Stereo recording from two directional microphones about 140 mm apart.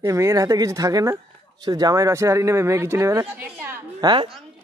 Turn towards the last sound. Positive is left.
turn(degrees=-35)  # may be behind; listen again after turning